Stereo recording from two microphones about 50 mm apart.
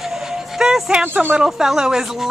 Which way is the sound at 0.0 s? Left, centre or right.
Centre.